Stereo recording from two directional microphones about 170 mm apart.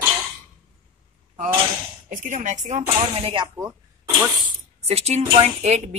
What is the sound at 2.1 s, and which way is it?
Speech, 50° right (ahead or behind).